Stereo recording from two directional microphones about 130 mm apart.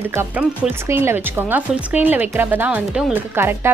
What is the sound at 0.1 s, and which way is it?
Speech, 15° right (ahead or behind).